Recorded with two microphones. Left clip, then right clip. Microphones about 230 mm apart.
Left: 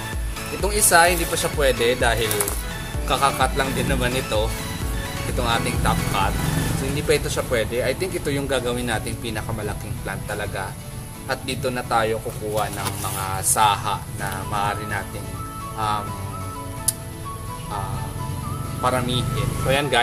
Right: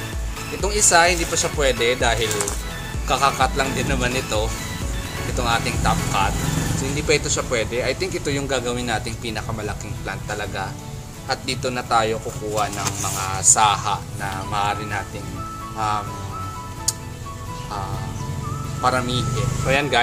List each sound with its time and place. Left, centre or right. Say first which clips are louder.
0.6 s speech: even; centre
18.8 s speech: right 2 dB; centre